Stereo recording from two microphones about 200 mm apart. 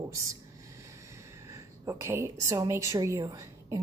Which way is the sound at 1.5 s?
15° right (ahead or behind).